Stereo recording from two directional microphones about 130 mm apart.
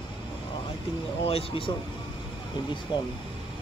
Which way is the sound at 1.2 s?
45° left (ahead or behind).